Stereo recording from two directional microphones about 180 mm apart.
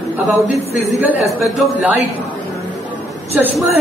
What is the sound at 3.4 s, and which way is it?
Speech, 10° right (ahead or behind).